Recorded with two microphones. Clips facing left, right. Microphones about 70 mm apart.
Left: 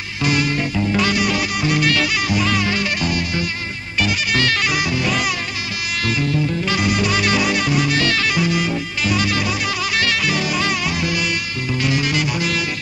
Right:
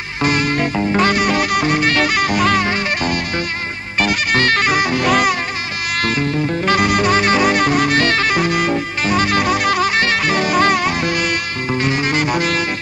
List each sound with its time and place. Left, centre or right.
0.2 s music: right
6.0 s music: right
9.9 s music: right